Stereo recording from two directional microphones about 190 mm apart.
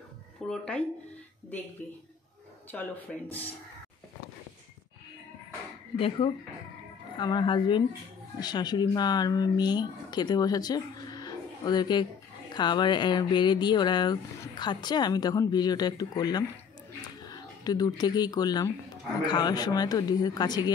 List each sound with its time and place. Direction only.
0.5 s speech: 5° left (ahead or behind)
2.7 s speech: 10° left (ahead or behind)
5.9 s speech: 30° left (ahead or behind)